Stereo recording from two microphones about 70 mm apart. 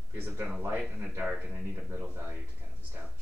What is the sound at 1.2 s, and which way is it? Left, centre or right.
Speech, centre.